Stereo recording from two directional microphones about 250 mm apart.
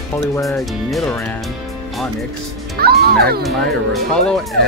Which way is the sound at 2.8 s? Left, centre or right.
Right.